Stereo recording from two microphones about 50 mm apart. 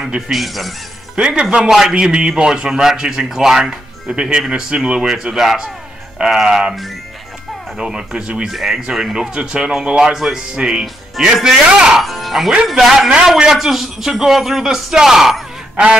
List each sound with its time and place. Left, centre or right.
0.3 s a man's voice: centre
1.1 s speech: centre
1.7 s speech: centre
2.0 s speech: centre
7.8 s a man's voice: centre